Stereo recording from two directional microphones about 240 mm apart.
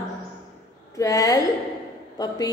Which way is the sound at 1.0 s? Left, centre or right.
Centre.